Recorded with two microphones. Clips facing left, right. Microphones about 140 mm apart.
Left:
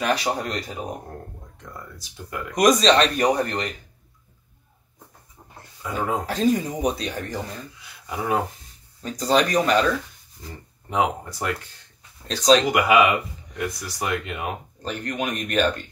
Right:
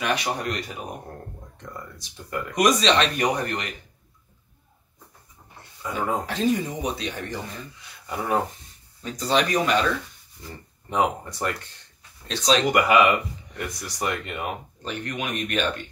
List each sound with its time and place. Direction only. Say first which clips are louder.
0.0 s speech: left 2 dB; 35° left (ahead or behind)
1.7 s speech: right 1 dB; centre (ahead or behind)
2.5 s speech: left 3 dB; 35° left (ahead or behind)
5.8 s speech: left 1 dB; centre (ahead or behind)
6.2 s speech: left 2 dB; 40° left (ahead or behind)
8.1 s speech: left 1 dB; 5° left (ahead or behind)
9.0 s speech: left 3 dB; 40° left (ahead or behind)
10.9 s speech: even; 5° left (ahead or behind)
12.3 s speech: left 5 dB; 40° left (ahead or behind)
12.7 s speech: left 1 dB; 10° left (ahead or behind)
14.8 s speech: left 4 dB; 40° left (ahead or behind)